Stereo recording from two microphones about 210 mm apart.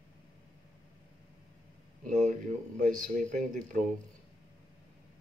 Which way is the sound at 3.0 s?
35° right (ahead or behind).